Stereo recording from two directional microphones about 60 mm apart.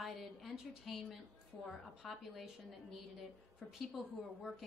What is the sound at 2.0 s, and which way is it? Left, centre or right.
Speech, centre.